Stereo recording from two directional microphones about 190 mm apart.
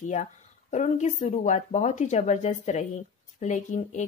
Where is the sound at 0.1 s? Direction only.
40° left (ahead or behind).